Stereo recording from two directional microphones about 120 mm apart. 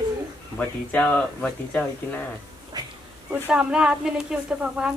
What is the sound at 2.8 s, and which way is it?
Insect, 35° right (ahead or behind).